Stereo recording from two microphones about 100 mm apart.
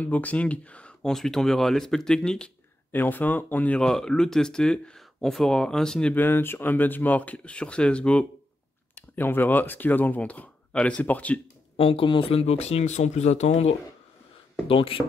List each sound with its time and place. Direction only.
0.0 s speech: 15° left (ahead or behind)
2.9 s speech: 20° left (ahead or behind)
6.1 s speech: 20° left (ahead or behind)
11.7 s speech: 65° left (ahead or behind); by 13.7 s 90° left
14.7 s speech: 65° left (ahead or behind)